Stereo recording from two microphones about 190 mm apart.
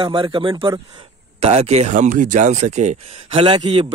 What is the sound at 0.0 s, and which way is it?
Speech, 25° right (ahead or behind).